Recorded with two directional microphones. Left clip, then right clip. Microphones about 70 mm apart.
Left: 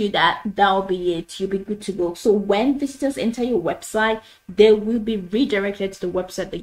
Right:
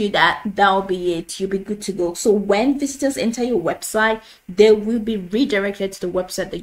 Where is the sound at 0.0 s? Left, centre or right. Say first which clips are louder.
Right 2 dB; right.